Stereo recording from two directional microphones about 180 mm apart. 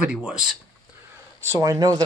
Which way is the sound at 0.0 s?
5° right (ahead or behind).